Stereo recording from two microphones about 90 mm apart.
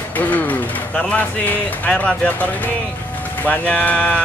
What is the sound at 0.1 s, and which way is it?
Speech, 20° left (ahead or behind).